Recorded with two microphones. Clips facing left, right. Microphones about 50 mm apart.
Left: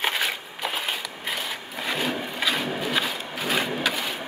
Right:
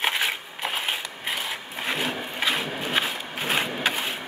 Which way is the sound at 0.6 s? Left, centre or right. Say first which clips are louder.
Even; right.